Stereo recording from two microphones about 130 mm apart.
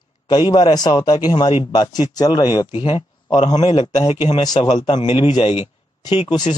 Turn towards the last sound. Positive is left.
turn(degrees=35)  # may be behind; listen again after turning